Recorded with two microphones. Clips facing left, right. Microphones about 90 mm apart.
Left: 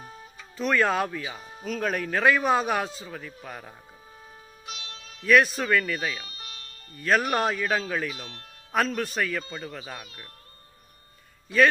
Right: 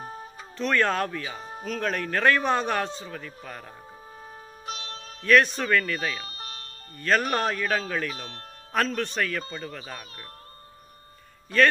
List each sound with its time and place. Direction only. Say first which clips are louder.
0.0 s music: right 6 dB; 40° right (ahead or behind)
0.6 s speech: left 1 dB; 5° left (ahead or behind)
4.6 s music: right 5 dB; 40° right (ahead or behind)
5.2 s speech: even; 5° left (ahead or behind)
6.2 s music: right 4 dB; 40° right (ahead or behind)
7.0 s speech: left 1 dB; 5° left (ahead or behind)